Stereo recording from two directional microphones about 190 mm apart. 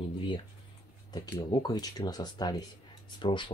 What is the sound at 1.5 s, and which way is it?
Speech, 20° left (ahead or behind).